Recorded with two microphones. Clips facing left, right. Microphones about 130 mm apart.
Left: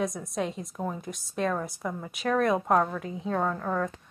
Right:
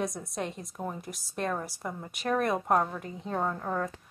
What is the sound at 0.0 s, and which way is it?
A woman's voice, centre (ahead or behind).